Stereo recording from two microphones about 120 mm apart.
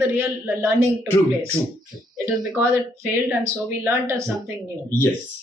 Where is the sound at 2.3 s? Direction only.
5° right (ahead or behind).